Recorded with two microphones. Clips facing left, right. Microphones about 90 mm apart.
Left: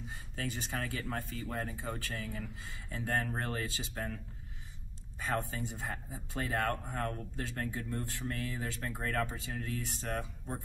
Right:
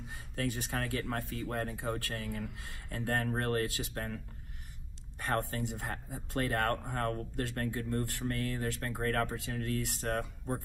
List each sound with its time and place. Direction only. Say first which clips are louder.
0.1 s speech: right 5 dB; 60° right (ahead or behind)
5.5 s speech: right 2 dB; 70° right (ahead or behind)